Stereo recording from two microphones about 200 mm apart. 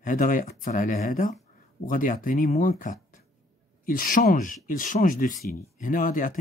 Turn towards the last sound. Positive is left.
turn(degrees=40)  # may be behind; listen again after turning